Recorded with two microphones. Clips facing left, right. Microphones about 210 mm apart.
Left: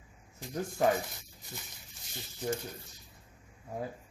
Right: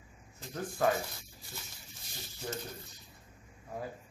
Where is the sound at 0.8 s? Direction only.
20° left (ahead or behind).